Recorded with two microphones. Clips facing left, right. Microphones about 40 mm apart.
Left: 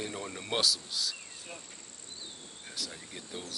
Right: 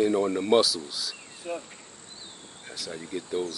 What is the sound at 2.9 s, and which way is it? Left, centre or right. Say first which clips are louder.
Speech: right 12 dB; centre.